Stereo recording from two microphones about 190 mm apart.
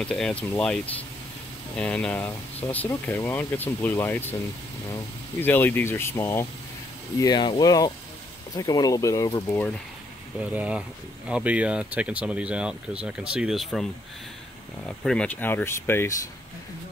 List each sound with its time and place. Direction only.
0.0 s speech: 5° left (ahead or behind)
1.8 s speech: 5° left (ahead or behind)
10.5 s speech: 5° right (ahead or behind)
14.9 s speech: 5° left (ahead or behind)